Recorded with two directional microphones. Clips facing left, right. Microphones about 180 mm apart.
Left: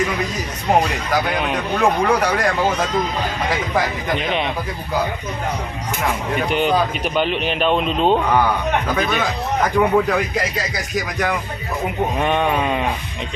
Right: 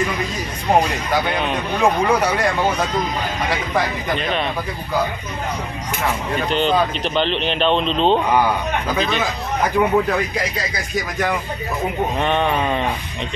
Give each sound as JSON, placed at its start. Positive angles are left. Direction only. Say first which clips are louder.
{"t": 1.1, "sound": "speech", "louder": "even", "side_deg": 5}
{"t": 4.1, "sound": "speech", "louder": "left 1 dB", "side_deg": 15}
{"t": 6.3, "sound": "speech", "louder": "even", "side_deg": 10}